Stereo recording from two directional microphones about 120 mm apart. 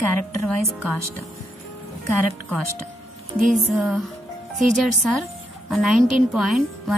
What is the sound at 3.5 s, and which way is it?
A woman's voice, 5° right (ahead or behind).